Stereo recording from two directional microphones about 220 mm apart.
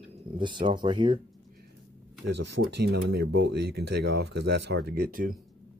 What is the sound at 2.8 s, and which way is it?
Speech, 45° right (ahead or behind).